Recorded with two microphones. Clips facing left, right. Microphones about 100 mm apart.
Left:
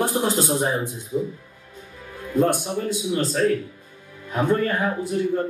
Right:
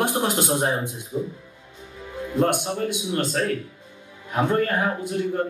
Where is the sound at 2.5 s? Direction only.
60° right (ahead or behind).